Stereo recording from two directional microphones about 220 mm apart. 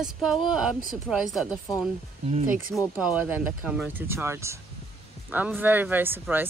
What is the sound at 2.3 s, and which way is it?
Speech, 35° right (ahead or behind).